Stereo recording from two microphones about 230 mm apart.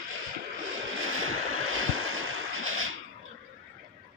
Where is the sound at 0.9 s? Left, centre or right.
Right.